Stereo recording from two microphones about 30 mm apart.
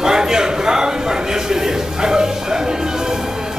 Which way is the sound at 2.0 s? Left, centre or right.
Right.